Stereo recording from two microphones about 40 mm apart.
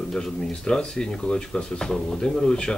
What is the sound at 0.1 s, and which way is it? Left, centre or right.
Speech, centre.